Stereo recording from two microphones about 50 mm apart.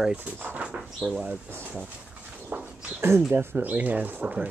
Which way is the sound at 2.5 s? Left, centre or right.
Right.